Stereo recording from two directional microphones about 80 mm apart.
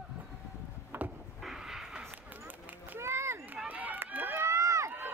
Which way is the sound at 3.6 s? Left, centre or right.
Right.